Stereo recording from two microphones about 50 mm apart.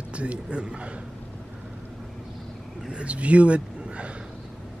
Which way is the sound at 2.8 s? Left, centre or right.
Right.